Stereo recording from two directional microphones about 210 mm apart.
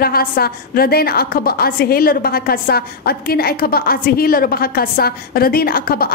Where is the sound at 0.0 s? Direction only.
45° left (ahead or behind).